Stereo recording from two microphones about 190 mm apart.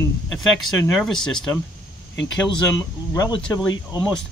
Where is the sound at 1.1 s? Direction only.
5° left (ahead or behind).